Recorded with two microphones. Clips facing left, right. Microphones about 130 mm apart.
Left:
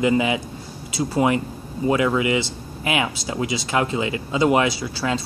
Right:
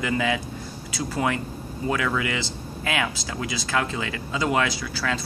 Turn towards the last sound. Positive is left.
turn(degrees=25)  # may be behind; listen again after turning